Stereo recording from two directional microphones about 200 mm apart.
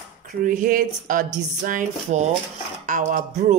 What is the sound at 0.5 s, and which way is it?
Speech, 40° right (ahead or behind).